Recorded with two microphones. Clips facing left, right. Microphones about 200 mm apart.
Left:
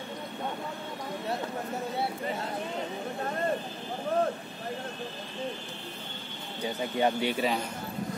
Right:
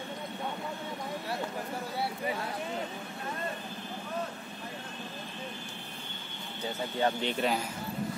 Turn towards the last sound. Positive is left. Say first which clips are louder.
# left 2 dB
turn(degrees=0)  # may be behind; listen again after turning